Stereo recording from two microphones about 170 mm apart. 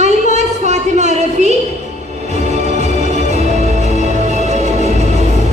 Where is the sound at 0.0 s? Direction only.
40° right (ahead or behind).